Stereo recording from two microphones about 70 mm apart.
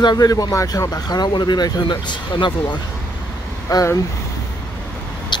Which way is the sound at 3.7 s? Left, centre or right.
Left.